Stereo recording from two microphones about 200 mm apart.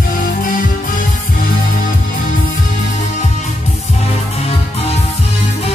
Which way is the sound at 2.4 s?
35° left (ahead or behind).